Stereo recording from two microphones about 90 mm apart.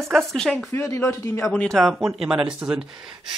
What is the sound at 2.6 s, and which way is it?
Speech, 10° right (ahead or behind).